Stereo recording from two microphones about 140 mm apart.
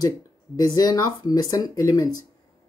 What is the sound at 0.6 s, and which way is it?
Speech, 30° left (ahead or behind).